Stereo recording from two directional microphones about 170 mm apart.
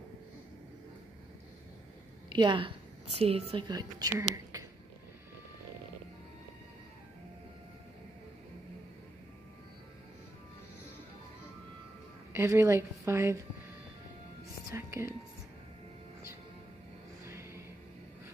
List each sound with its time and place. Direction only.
2.2 s a woman's voice: 25° right (ahead or behind)
12.3 s a woman's voice: 15° right (ahead or behind)
14.7 s speech: 15° right (ahead or behind)
17.2 s music: 15° right (ahead or behind)